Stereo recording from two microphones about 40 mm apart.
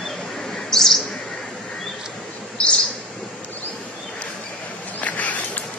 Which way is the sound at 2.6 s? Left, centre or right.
Left.